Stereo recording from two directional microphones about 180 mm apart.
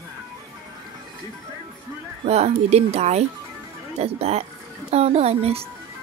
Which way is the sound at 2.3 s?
35° right (ahead or behind).